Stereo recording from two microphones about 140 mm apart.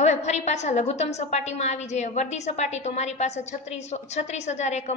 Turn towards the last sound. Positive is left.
turn(degrees=55)  # may be behind; listen again after turning